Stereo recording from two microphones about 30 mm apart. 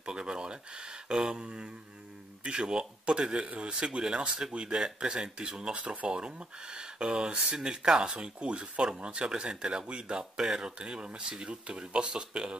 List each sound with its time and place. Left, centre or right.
0.0 s a sound: right
1.3 s speech: right
10.3 s speech: centre
10.8 s speech: right